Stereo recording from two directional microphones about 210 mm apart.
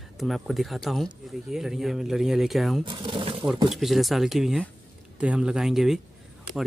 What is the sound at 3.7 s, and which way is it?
Speech, centre (ahead or behind).